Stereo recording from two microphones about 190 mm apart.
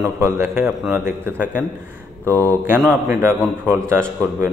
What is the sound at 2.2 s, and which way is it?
Speech, 10° left (ahead or behind).